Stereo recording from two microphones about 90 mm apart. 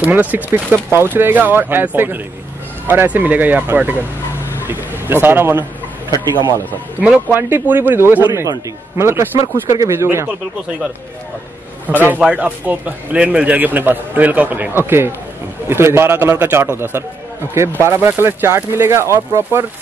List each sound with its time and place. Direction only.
0.0 s a man's voice: 20° right (ahead or behind)
6.1 s speech: 55° left (ahead or behind)
7.2 s speech: 20° right (ahead or behind)
12.2 s speech: 15° right (ahead or behind)